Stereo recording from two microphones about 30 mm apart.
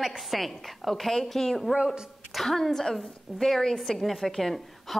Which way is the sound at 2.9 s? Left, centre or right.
Centre.